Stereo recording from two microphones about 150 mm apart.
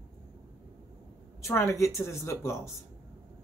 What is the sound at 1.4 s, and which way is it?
Speech, 20° left (ahead or behind).